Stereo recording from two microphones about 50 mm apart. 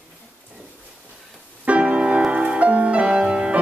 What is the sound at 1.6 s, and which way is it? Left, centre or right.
Music, right.